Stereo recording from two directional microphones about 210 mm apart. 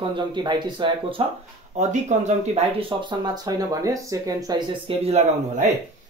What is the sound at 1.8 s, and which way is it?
Speech, 35° right (ahead or behind).